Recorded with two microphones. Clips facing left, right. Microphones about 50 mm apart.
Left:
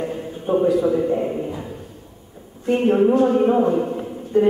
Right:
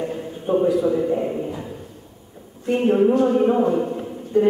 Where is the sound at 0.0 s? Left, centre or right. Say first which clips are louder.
Left 1 dB; centre.